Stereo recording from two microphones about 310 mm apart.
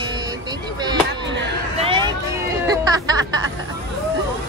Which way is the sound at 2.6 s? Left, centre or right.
Centre.